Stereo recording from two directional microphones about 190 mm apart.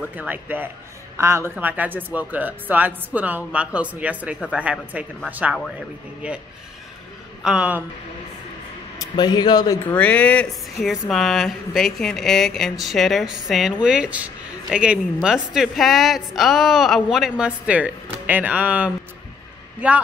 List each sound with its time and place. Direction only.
0.1 s speech: 10° right (ahead or behind)
7.4 s speech: 5° right (ahead or behind)
8.9 s speech: 20° left (ahead or behind)
9.8 s a woman's voice: 10° left (ahead or behind)